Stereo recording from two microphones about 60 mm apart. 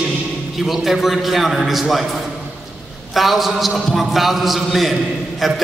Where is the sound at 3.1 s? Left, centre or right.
Centre.